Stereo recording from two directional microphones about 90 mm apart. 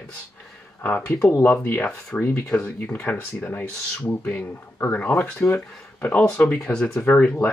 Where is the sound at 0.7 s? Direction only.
20° left (ahead or behind).